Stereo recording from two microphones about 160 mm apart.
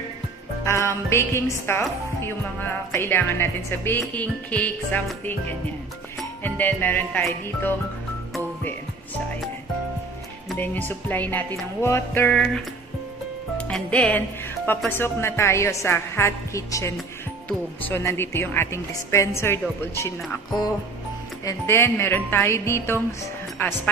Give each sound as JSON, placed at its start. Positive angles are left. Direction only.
{"t": 0.7, "sound": "a woman's voice", "side_deg": 15}
{"t": 6.4, "sound": "a woman's voice", "side_deg": 10}
{"t": 10.6, "sound": "a woman's voice", "side_deg": 10}